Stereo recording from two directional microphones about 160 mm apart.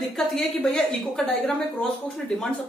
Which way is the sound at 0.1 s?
Centre (ahead or behind).